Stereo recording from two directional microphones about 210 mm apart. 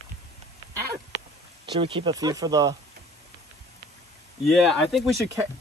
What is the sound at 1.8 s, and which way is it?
Speech, 25° right (ahead or behind).